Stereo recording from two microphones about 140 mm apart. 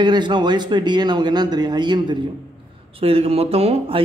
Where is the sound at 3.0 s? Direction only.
45° right (ahead or behind).